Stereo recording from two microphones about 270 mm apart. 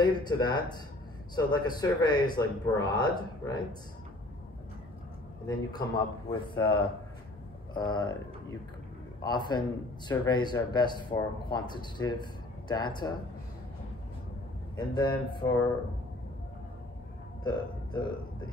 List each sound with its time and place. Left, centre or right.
0.0 s speech: centre
5.7 s speech: centre
14.8 s speech: centre
17.4 s speech: centre